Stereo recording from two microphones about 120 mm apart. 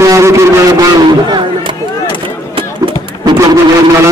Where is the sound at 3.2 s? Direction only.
35° right (ahead or behind).